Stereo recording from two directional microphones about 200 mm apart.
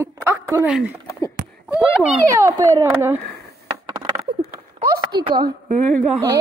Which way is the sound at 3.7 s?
20° right (ahead or behind).